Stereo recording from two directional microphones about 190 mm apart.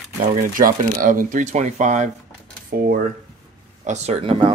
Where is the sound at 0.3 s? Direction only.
45° right (ahead or behind).